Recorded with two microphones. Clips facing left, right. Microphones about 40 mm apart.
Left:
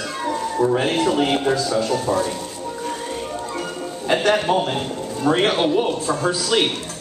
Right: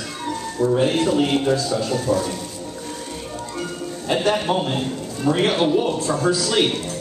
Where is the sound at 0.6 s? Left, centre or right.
Left.